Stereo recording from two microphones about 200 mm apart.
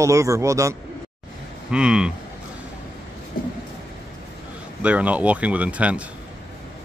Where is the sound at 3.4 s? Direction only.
45° left (ahead or behind).